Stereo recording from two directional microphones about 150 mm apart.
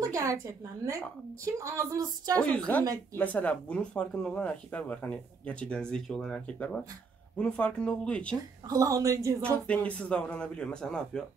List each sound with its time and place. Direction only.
0.0 s a woman's voice: 20° right (ahead or behind)
2.5 s speech: 10° left (ahead or behind)
8.6 s a woman's voice: 25° right (ahead or behind)
9.7 s speech: 10° left (ahead or behind)